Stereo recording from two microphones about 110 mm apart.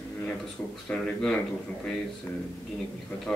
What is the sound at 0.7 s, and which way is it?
Speech, 5° left (ahead or behind).